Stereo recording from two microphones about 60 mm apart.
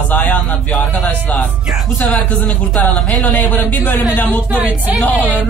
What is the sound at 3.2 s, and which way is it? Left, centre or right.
Speech, left.